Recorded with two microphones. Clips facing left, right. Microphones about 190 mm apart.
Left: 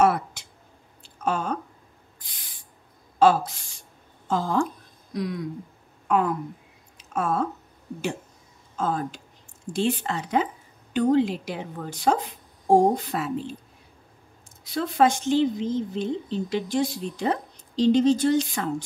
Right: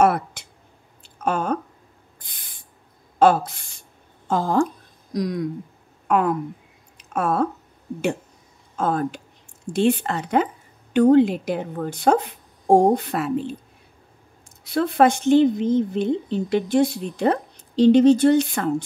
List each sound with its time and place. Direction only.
0.0 s a sound: 60° right (ahead or behind)
2.1 s owl: 55° right (ahead or behind)
3.2 s a woman's voice: 55° right (ahead or behind)
5.1 s speech: 40° right (ahead or behind)
6.0 s speech: 60° right (ahead or behind)
7.0 s a sound: 60° right (ahead or behind)
8.7 s a woman's voice: 60° right (ahead or behind)
14.6 s a woman's voice: 60° right (ahead or behind)